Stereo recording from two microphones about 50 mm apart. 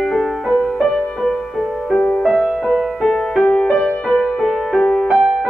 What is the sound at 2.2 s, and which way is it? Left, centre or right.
Music, centre.